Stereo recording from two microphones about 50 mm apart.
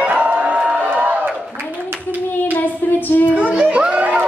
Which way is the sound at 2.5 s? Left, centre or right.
Left.